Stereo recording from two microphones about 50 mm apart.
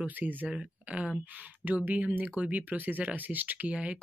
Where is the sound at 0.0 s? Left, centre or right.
Right.